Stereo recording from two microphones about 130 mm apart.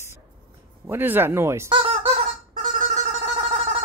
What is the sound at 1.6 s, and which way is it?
Fowl, 45° right (ahead or behind).